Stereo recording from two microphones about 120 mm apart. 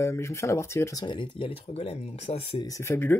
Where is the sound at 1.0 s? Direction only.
40° left (ahead or behind); by 2.6 s 60° left (ahead or behind).